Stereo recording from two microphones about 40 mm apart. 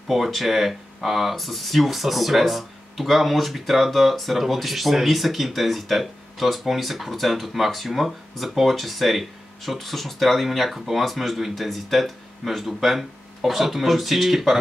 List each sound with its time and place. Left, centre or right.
0.1 s speech: centre